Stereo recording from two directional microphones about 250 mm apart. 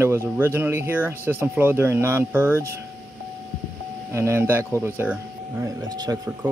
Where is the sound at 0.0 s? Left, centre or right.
Centre.